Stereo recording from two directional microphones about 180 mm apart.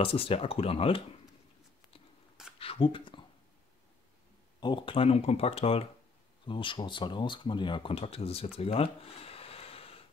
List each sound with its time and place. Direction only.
0.0 s speech: 30° left (ahead or behind)
2.6 s a sound: 30° left (ahead or behind)
4.6 s speech: 25° left (ahead or behind)